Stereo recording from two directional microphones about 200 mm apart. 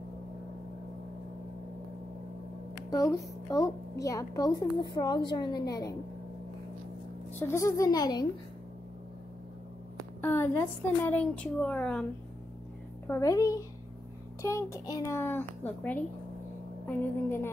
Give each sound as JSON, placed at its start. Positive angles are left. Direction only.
{"t": 2.9, "sound": "a child's voice", "side_deg": 15}
{"t": 7.3, "sound": "a child's voice", "side_deg": 15}
{"t": 10.2, "sound": "a sound", "side_deg": 10}
{"t": 11.1, "sound": "a child's voice", "side_deg": 5}